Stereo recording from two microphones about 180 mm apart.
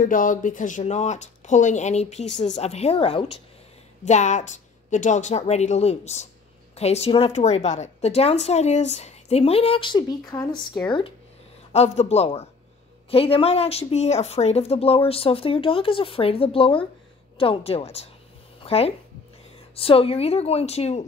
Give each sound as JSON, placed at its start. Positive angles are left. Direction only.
{"t": 0.0, "sound": "a woman's voice", "side_deg": 50}